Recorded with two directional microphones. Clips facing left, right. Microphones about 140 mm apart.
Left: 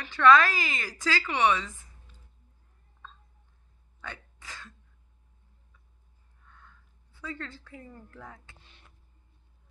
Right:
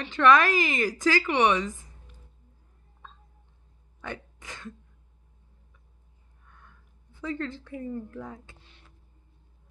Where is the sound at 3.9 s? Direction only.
20° right (ahead or behind).